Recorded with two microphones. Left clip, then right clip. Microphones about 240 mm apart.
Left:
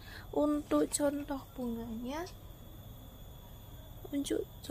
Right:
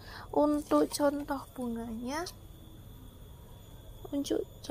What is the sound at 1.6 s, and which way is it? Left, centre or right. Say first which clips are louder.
Speech: right 2 dB; centre.